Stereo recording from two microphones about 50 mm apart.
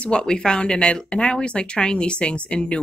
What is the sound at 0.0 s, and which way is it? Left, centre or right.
Speech, centre.